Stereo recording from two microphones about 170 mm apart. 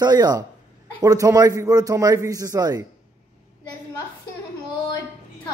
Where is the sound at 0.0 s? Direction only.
25° right (ahead or behind).